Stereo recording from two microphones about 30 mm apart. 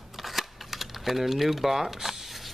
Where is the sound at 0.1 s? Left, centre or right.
Centre.